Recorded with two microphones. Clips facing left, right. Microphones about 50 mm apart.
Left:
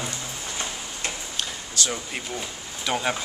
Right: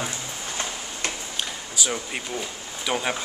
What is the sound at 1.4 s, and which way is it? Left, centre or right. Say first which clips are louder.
Speech: even; centre.